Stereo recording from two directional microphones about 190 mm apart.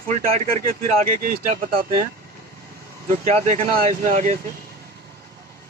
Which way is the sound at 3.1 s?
40° right (ahead or behind).